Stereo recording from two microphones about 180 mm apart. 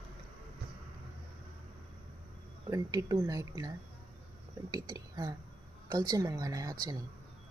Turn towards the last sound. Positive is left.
turn(degrees=-20)  # may be behind; listen again after turning